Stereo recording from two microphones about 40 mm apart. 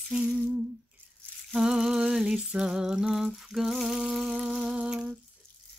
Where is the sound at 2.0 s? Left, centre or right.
Centre.